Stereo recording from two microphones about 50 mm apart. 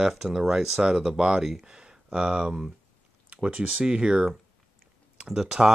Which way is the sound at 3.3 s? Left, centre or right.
Right.